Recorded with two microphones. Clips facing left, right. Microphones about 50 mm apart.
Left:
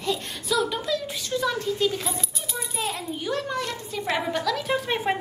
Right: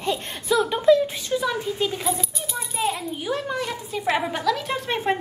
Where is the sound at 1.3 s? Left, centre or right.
Centre.